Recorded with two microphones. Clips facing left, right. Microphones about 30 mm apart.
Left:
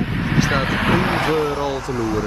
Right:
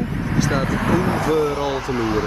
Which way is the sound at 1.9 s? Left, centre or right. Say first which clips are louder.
Right 2 dB; right.